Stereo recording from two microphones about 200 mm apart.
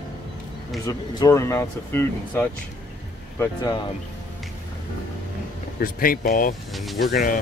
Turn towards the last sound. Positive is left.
turn(degrees=45)  # may be behind; listen again after turning